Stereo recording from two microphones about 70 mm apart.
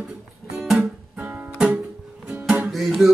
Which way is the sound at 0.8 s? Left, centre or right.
Centre.